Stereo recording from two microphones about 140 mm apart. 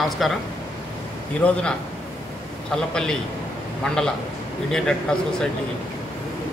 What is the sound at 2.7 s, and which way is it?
A man's voice, 5° left (ahead or behind).